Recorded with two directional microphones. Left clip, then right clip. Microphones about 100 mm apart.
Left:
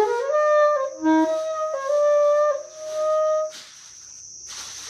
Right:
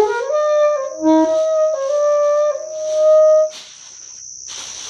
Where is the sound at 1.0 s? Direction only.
30° left (ahead or behind).